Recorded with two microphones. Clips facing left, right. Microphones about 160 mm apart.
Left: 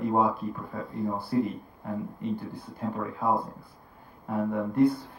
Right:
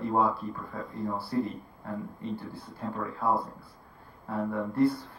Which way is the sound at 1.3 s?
10° left (ahead or behind).